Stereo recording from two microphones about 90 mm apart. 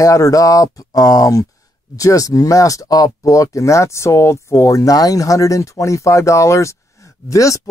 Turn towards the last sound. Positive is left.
turn(degrees=35)  # may be behind; listen again after turning